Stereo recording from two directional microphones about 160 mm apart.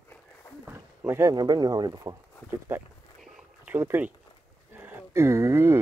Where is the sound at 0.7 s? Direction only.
15° right (ahead or behind).